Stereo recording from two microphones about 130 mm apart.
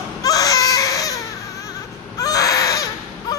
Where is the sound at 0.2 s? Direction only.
30° left (ahead or behind).